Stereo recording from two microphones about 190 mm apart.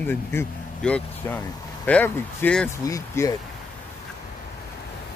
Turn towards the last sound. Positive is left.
turn(degrees=15)  # may be behind; listen again after turning